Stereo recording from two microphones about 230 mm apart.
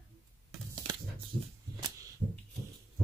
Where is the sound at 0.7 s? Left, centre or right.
Centre.